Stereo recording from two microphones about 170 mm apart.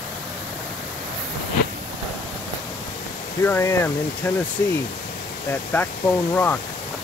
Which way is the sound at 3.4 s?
15° left (ahead or behind).